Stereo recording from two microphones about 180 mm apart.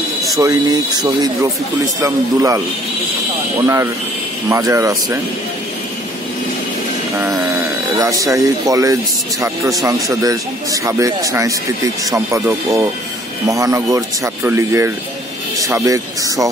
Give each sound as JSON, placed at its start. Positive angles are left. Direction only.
{"t": 0.4, "sound": "speech", "side_deg": -20}
{"t": 3.6, "sound": "speech", "side_deg": -15}
{"t": 8.0, "sound": "speech", "side_deg": -20}